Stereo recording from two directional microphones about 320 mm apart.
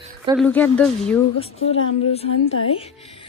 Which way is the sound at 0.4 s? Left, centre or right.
Centre.